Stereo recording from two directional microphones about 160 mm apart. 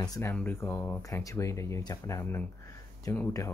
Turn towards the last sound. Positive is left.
turn(degrees=20)  # may be behind; listen again after turning